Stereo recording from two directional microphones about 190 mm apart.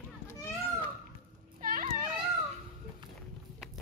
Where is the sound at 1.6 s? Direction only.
45° right (ahead or behind).